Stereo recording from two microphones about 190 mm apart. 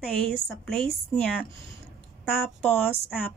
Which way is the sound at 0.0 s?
Centre (ahead or behind).